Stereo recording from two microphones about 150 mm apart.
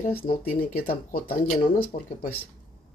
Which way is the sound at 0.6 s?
90° left.